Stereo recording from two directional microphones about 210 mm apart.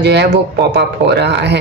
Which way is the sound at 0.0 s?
55° right (ahead or behind).